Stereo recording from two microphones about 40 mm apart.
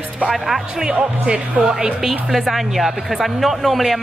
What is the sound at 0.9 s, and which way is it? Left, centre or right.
Speech, right.